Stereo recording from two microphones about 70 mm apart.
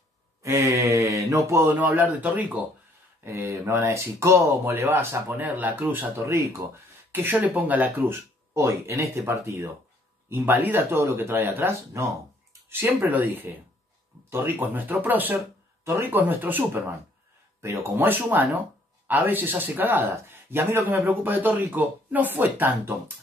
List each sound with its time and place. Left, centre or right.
0.6 s mantra: right
1.7 s speech: right
3.3 s speech: right
5.1 s speech: right
6.2 s speech: right
7.1 s speech: right
8.5 s speech: right
10.3 s speech: right
15.3 s a sound: right
16.1 s speech: right
17.9 s speech: right